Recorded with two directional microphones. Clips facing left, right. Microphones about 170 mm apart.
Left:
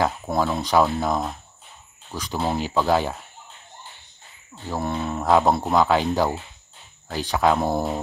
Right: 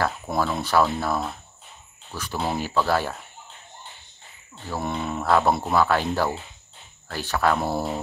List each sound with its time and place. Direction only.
0.4 s speech: 15° left (ahead or behind)
4.8 s speech: centre (ahead or behind)
5.2 s speech: 15° left (ahead or behind)